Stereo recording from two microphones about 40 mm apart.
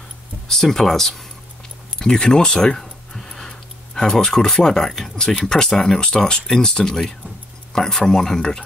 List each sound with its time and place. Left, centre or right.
0.5 s speech: centre
2.0 s tick-tock: centre
4.4 s speech: centre